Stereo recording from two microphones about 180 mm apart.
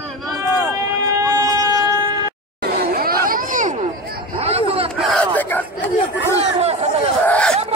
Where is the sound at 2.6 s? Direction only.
55° right (ahead or behind).